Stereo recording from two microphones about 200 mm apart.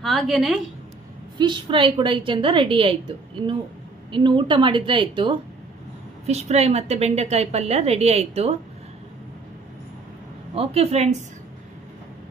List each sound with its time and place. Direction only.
0.0 s a woman's voice: centre (ahead or behind)
1.4 s a woman's voice: 25° right (ahead or behind)
10.5 s a woman's voice: 30° right (ahead or behind)